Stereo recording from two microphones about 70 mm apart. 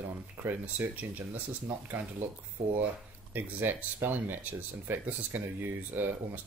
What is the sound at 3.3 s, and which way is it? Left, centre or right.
Speech, right.